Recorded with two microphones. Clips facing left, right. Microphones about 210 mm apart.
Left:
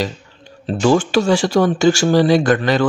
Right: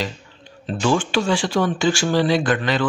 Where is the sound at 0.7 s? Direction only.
40° left (ahead or behind).